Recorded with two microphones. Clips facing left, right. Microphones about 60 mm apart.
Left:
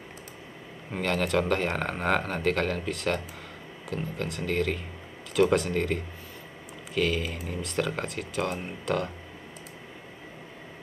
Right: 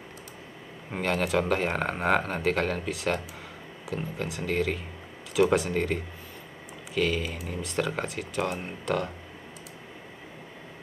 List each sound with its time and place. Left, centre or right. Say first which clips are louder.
0.9 s speech: even; centre